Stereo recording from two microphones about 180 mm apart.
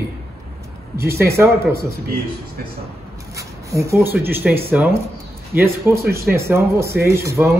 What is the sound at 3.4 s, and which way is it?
Speech, 15° right (ahead or behind).